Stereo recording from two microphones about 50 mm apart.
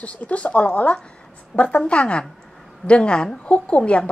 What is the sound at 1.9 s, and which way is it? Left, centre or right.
A woman's voice, left.